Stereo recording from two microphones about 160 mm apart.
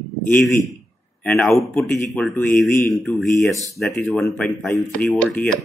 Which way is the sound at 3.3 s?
20° left (ahead or behind).